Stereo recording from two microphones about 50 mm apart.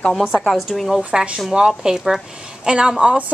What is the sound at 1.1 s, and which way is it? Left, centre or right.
Speech, right.